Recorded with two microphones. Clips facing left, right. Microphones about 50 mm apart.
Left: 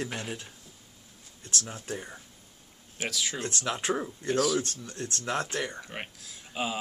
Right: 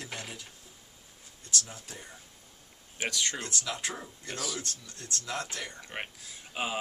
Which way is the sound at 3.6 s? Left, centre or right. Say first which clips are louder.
Left 7 dB; left.